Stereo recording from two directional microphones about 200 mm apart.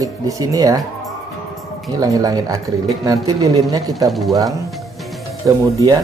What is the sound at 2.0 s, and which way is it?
Speech, 20° right (ahead or behind).